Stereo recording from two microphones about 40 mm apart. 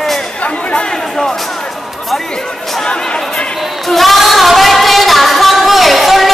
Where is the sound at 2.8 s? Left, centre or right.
Left.